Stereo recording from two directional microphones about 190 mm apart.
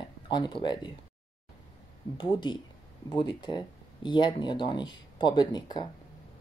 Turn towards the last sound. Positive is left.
turn(degrees=20)  # may be behind; listen again after turning